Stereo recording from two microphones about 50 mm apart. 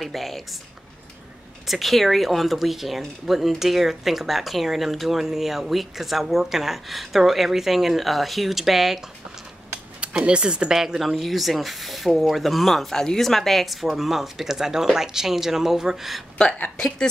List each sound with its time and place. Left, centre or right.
0.0 s a woman's voice: centre
1.7 s speech: centre
9.9 s speech: right
10.8 s speech: centre
16.4 s a woman's voice: centre